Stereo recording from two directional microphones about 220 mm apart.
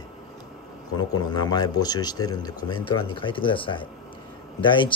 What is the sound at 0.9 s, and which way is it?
Speech, 20° left (ahead or behind).